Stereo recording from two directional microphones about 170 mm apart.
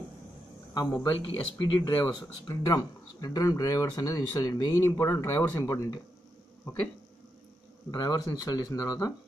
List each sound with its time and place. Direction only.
1.2 s speech: 30° left (ahead or behind)
7.9 s speech: 25° left (ahead or behind)